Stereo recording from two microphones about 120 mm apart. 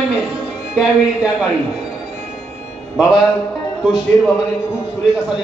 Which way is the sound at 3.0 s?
5° right (ahead or behind).